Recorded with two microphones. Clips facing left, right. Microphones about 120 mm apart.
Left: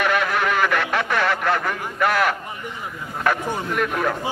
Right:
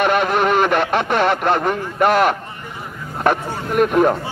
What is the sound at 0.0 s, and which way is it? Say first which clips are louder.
Speech: right 5 dB; 25° right (ahead or behind).